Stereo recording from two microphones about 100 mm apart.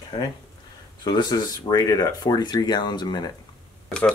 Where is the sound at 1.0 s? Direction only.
45° left (ahead or behind).